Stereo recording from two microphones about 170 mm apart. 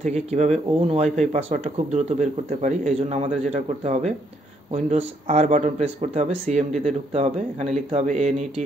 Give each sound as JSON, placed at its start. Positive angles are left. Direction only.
{"t": 0.0, "sound": "speech", "side_deg": -40}